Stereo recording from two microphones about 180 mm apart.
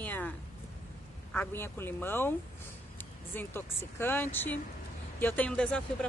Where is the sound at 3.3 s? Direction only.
10° left (ahead or behind).